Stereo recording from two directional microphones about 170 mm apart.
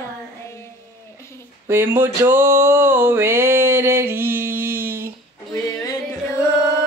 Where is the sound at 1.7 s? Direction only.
15° right (ahead or behind).